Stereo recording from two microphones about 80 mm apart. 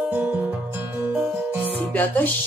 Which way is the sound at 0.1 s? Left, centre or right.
Right.